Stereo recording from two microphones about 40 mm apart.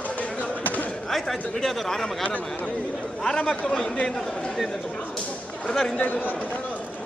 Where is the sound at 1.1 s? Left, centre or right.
Centre.